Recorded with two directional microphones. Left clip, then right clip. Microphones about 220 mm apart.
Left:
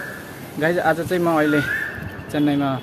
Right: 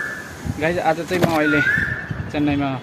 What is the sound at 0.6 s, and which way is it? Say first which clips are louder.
Speech: left 1 dB; 15° left (ahead or behind).